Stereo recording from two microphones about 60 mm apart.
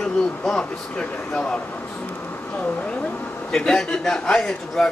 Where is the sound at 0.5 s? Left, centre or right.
Centre.